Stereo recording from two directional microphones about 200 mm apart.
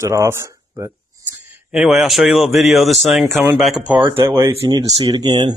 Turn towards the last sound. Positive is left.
turn(degrees=-20)  # may be behind; listen again after turning